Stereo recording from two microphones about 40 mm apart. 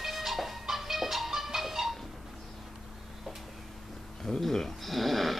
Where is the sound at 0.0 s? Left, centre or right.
Centre.